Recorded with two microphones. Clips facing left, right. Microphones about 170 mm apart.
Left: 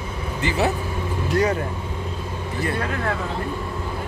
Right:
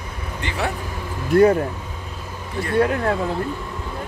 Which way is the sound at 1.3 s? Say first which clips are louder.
Right 7 dB; 55° right (ahead or behind).